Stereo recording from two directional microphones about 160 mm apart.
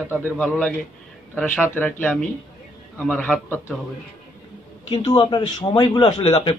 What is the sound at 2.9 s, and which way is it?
Speech, 10° left (ahead or behind).